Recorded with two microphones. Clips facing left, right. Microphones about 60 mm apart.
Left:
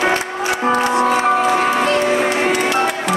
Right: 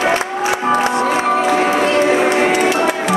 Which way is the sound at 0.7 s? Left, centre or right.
Centre.